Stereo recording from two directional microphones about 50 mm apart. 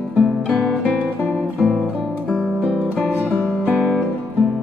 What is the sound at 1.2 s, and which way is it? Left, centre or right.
Music, right.